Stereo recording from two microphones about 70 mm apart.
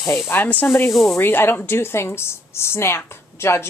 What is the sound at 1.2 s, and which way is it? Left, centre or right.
A woman's voice, left.